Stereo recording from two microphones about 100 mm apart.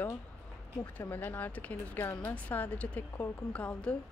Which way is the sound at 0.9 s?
20° left (ahead or behind).